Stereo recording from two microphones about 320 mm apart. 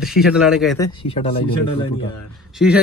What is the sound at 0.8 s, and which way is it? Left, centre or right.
Speech, centre.